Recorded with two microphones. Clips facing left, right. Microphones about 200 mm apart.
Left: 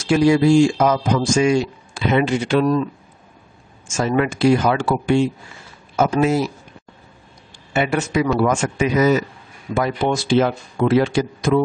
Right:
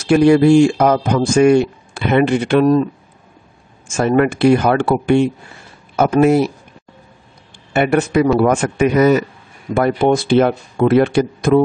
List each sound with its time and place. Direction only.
0.0 s speech: 60° right (ahead or behind)
3.9 s speech: 55° right (ahead or behind)
7.7 s speech: 55° right (ahead or behind)